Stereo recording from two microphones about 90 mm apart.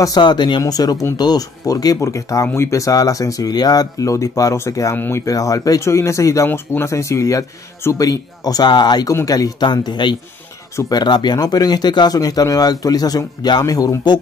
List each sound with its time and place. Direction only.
0.0 s speech: 50° left (ahead or behind); by 4.9 s 35° left (ahead or behind)
4.9 s speech: 20° left (ahead or behind)
5.2 s speech: 40° left (ahead or behind)
9.1 s speech: 40° left (ahead or behind)